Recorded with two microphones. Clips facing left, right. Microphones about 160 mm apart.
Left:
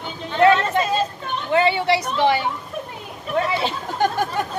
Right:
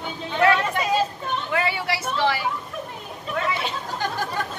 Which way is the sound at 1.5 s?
25° left (ahead or behind).